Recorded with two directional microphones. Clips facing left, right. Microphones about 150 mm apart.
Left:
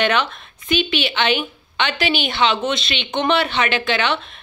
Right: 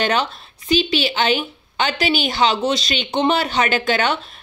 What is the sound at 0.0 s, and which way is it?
A woman's voice, 35° right (ahead or behind).